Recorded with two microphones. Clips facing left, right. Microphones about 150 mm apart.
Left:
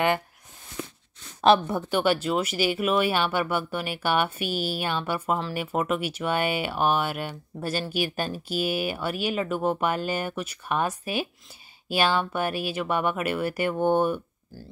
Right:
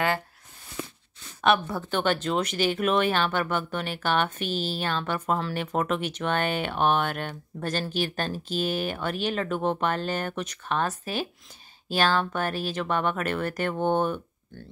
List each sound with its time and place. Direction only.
1.4 s a woman's voice: 30° left (ahead or behind)
1.8 s speech: 10° left (ahead or behind)